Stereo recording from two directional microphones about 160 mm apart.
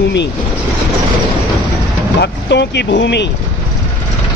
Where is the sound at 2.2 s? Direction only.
90° left.